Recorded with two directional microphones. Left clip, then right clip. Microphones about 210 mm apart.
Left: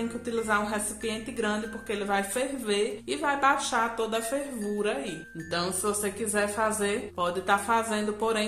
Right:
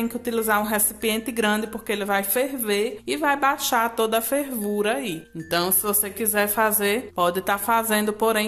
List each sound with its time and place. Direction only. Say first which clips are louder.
0.3 s a woman's voice: right 5 dB; 40° right (ahead or behind)